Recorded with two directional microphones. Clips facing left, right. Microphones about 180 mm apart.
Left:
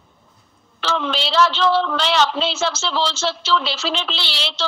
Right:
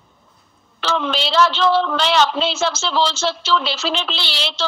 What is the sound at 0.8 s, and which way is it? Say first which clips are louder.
A man's voice: right 1 dB; 50° right (ahead or behind).